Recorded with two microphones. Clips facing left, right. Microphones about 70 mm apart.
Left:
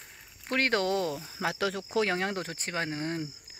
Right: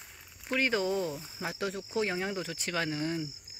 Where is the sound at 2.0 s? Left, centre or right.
Left.